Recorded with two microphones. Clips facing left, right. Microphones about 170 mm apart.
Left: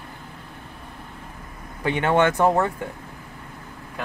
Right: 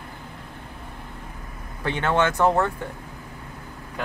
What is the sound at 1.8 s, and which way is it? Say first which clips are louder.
Speech: left 3 dB; 15° left (ahead or behind).